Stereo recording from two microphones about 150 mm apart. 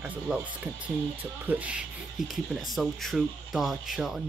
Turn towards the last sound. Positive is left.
turn(degrees=0)  # may be behind; listen again after turning